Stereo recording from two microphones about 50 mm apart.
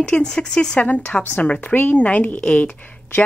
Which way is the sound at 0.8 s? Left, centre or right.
Left.